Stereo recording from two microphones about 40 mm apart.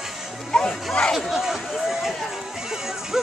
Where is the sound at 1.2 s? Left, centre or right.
Centre.